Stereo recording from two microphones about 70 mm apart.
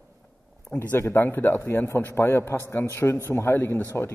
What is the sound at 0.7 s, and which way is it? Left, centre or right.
Speech, left.